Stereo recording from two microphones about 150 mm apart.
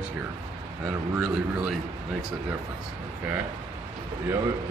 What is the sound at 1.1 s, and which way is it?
Speech, 10° right (ahead or behind).